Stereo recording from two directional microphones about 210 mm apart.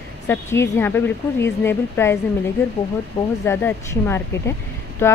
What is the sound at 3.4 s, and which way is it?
Speech, 10° left (ahead or behind).